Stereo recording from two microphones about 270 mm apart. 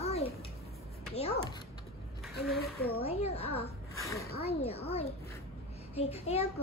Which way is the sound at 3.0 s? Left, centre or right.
Left.